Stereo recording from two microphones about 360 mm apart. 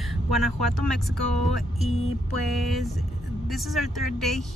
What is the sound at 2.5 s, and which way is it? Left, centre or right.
Speech, centre.